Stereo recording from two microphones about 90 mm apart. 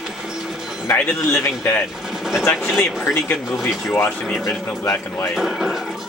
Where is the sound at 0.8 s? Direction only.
20° left (ahead or behind).